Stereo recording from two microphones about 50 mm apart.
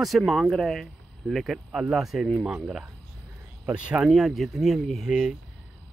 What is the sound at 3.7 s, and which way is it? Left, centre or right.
Speech, right.